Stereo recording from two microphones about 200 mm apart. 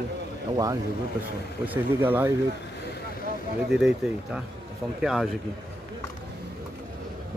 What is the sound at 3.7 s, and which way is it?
Speech, 5° right (ahead or behind).